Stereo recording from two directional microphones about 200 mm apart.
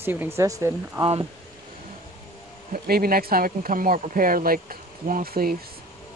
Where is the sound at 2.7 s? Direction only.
50° right (ahead or behind).